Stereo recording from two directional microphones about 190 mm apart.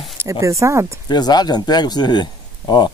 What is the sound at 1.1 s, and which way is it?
Speech, 20° left (ahead or behind).